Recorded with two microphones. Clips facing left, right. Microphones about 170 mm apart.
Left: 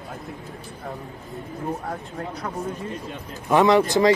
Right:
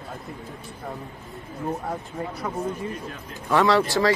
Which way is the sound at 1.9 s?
5° right (ahead or behind).